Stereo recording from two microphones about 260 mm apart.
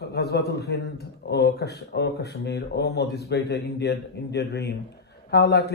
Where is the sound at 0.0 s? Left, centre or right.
Left.